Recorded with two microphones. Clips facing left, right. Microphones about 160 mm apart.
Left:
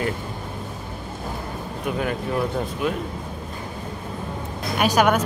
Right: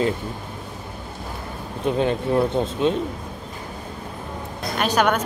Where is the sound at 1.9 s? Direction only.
25° right (ahead or behind).